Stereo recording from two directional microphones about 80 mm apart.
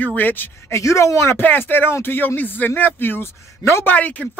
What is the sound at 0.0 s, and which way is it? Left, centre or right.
Speech, left.